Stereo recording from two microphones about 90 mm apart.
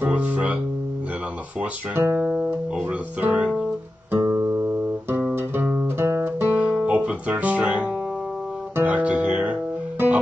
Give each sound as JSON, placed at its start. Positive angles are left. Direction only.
{"t": 0.0, "sound": "speech", "side_deg": -15}
{"t": 1.6, "sound": "speech", "side_deg": -15}
{"t": 4.2, "sound": "guitar", "side_deg": -40}
{"t": 5.3, "sound": "music", "side_deg": -25}
{"t": 5.9, "sound": "guitar", "side_deg": -25}